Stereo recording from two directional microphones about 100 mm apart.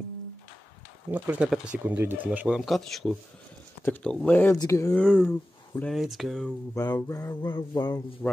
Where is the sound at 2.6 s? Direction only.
Centre (ahead or behind).